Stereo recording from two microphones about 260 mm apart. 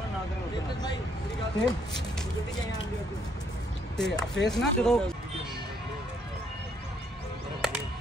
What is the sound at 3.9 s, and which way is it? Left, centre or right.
Speech, centre.